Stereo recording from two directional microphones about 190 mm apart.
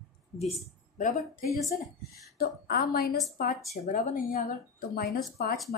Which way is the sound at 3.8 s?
40° left (ahead or behind).